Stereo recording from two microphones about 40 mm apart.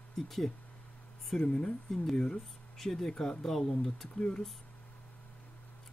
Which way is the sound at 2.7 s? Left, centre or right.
Centre.